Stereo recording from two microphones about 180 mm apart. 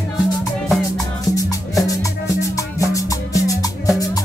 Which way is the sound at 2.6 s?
20° left (ahead or behind).